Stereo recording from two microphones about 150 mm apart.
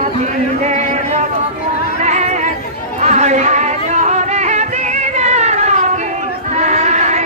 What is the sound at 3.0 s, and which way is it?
Music, 50° right (ahead or behind).